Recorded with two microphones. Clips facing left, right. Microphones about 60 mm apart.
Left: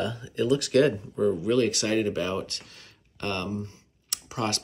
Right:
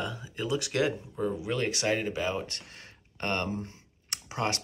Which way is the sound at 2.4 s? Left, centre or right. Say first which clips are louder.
Left 1 dB; right.